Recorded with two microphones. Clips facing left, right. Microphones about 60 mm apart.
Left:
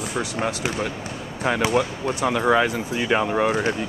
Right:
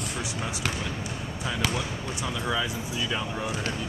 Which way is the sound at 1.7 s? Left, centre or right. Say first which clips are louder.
Left 10 dB; left.